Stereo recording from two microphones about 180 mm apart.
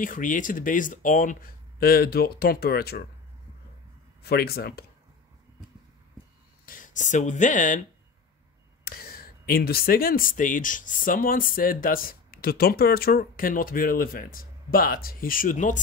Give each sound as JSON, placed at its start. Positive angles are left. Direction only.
{"t": 0.0, "sound": "speech", "side_deg": 45}
{"t": 4.2, "sound": "speech", "side_deg": 60}
{"t": 6.6, "sound": "speech", "side_deg": 50}
{"t": 8.8, "sound": "speech", "side_deg": 55}